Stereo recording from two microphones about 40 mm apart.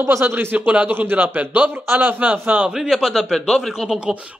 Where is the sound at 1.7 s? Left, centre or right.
Right.